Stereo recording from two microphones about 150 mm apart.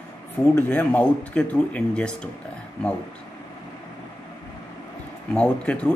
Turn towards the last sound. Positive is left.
turn(degrees=10)  # may be behind; listen again after turning